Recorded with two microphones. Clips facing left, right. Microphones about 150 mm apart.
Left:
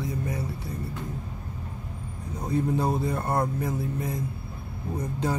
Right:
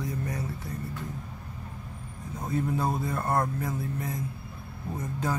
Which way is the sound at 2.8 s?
25° left (ahead or behind).